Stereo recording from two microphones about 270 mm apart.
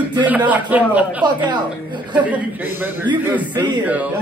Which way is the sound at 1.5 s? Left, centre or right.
Centre.